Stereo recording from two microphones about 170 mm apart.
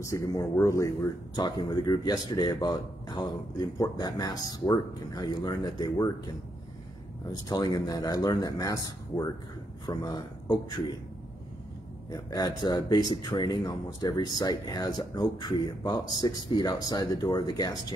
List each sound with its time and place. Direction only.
0.0 s speech: 20° left (ahead or behind)
7.2 s speech: 25° left (ahead or behind)
12.1 s speech: 20° left (ahead or behind)